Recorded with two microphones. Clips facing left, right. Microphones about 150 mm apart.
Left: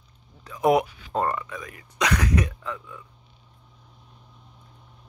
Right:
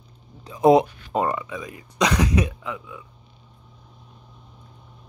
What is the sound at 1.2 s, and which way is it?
Speech, 10° right (ahead or behind).